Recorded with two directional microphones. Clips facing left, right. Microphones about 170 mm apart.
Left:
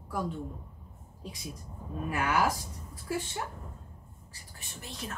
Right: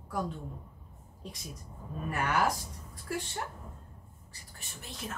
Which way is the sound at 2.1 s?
Centre (ahead or behind).